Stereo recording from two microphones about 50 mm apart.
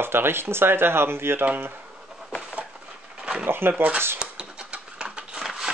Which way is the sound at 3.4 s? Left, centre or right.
Right.